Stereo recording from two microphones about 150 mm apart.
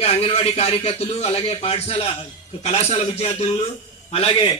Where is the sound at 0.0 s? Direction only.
40° left (ahead or behind).